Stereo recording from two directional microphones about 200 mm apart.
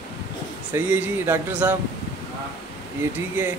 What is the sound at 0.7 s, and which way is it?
A man's voice, 10° right (ahead or behind).